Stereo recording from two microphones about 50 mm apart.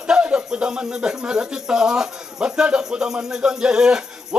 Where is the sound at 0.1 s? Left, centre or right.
Centre.